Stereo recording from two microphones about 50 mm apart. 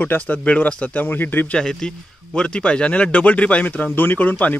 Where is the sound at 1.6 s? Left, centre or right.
Centre; by 4.6 s left.